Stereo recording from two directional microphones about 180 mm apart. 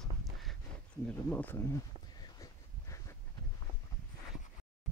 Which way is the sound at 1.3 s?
10° left (ahead or behind).